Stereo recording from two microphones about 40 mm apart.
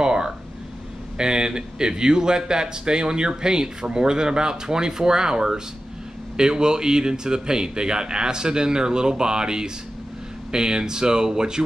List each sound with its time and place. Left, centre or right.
0.0 s air conditioning: centre
1.1 s a man's voice: centre